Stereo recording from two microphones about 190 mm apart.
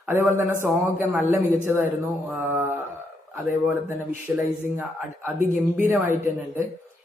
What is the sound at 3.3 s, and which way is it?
Speech, 10° right (ahead or behind).